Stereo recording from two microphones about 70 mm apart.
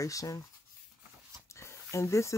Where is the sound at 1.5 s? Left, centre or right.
Left.